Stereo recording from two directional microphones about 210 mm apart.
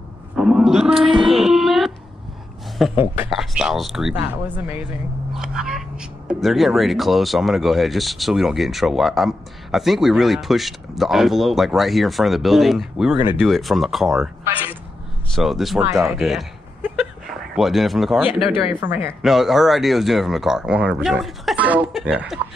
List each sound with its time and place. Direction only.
0.4 s a sound: centre (ahead or behind)
2.8 s speech: centre (ahead or behind)
5.3 s speech: 5° right (ahead or behind)
18.5 s speech: 25° left (ahead or behind)
19.2 s speech: centre (ahead or behind)